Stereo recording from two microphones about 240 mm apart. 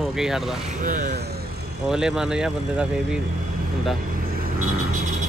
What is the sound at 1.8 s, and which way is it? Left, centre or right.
Speech, centre.